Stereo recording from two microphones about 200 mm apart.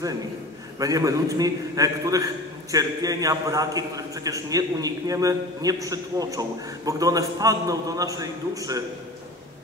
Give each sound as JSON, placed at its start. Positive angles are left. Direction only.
{"t": 0.7, "sound": "a man's voice", "side_deg": -15}